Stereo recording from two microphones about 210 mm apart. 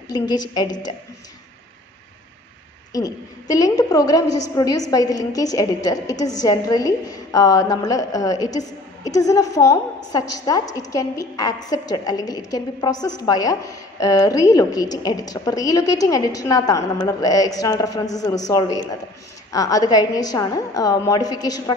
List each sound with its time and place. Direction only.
0.1 s a woman's voice: 20° left (ahead or behind)
2.9 s a woman's voice: 15° left (ahead or behind)